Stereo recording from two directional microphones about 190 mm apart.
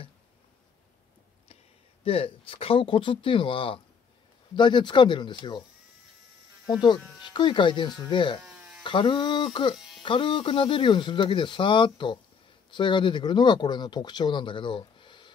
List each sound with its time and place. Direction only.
2.0 s speech: 30° left (ahead or behind)
6.7 s speech: 20° left (ahead or behind)
8.5 s electric shaver: 5° right (ahead or behind)
8.8 s speech: 25° left (ahead or behind)